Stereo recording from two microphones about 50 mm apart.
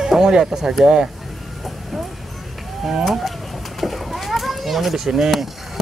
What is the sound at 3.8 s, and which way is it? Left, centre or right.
Children playing, centre.